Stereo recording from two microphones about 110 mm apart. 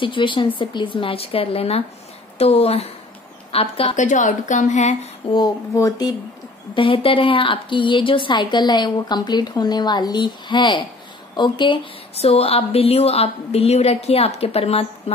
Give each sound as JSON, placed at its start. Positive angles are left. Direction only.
{"t": 0.0, "sound": "a woman's voice", "side_deg": 50}
{"t": 4.6, "sound": "speech", "side_deg": 90}
{"t": 5.2, "sound": "a woman's voice", "side_deg": 60}
{"t": 5.8, "sound": "speech", "side_deg": 35}
{"t": 6.7, "sound": "a woman's voice", "side_deg": 50}
{"t": 12.2, "sound": "a woman's voice", "side_deg": 65}